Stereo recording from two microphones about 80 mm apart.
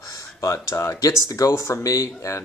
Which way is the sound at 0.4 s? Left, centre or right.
Left.